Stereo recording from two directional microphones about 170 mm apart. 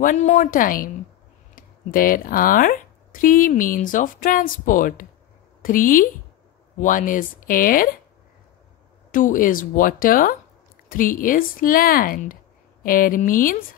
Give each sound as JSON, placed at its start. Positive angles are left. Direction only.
{"t": 0.0, "sound": "speech", "side_deg": 45}
{"t": 9.1, "sound": "speech", "side_deg": 50}